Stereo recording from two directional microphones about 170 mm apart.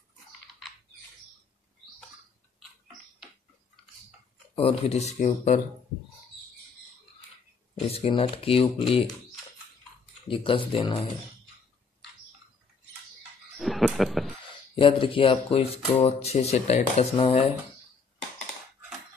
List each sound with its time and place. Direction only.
4.6 s speech: 35° left (ahead or behind)
7.9 s speech: 35° left (ahead or behind)
10.2 s speech: 30° left (ahead or behind)
13.6 s music: centre (ahead or behind)
14.8 s speech: 30° left (ahead or behind)